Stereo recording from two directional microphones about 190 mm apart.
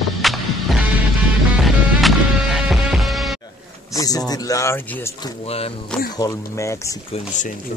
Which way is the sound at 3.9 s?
20° left (ahead or behind).